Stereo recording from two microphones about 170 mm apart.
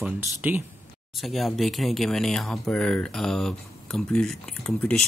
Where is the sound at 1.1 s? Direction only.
Centre (ahead or behind).